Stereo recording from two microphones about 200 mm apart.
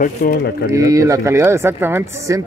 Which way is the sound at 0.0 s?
50° left (ahead or behind).